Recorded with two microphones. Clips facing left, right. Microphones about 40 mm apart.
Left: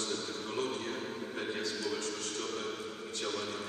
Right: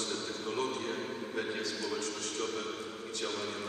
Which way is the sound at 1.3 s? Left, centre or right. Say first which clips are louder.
Right 1 dB; left.